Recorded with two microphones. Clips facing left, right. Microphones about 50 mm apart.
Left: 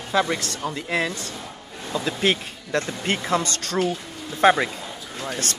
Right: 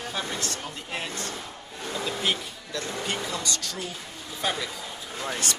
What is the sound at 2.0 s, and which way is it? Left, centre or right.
Speech, left.